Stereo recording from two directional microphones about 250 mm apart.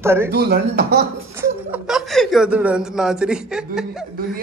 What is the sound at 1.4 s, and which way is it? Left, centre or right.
Speech, centre.